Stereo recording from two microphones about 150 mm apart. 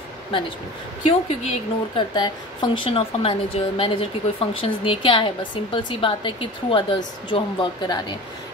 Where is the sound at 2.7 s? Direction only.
35° left (ahead or behind).